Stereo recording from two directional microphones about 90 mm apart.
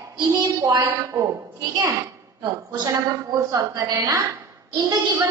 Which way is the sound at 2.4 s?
50° right (ahead or behind).